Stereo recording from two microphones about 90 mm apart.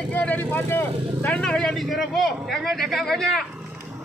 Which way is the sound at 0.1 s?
15° left (ahead or behind).